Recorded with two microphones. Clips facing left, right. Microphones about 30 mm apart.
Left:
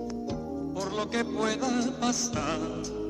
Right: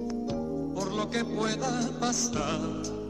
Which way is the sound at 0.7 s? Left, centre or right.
Left.